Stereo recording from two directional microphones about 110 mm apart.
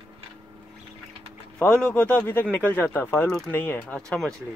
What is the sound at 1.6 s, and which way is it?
Speech, 10° left (ahead or behind).